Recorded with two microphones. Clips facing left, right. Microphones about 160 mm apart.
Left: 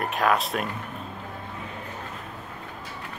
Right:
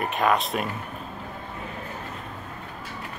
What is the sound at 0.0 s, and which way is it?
Speech, centre (ahead or behind).